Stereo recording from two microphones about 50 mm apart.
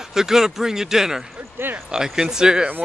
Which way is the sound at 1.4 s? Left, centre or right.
Right.